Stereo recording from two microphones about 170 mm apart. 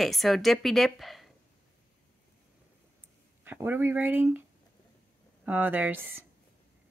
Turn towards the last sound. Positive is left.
turn(degrees=-10)  # may be behind; listen again after turning